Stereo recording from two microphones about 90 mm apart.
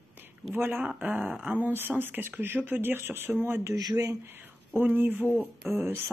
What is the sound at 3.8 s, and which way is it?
Speech, 45° right (ahead or behind).